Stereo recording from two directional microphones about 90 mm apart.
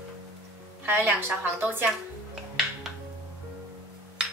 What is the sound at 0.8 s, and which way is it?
A woman's voice, 25° right (ahead or behind).